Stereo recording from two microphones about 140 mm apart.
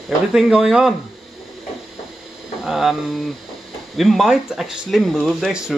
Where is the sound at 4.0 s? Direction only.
Centre (ahead or behind).